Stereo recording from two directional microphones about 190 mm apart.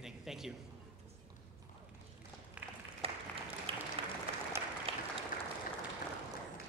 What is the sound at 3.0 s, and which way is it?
Applause, 30° right (ahead or behind).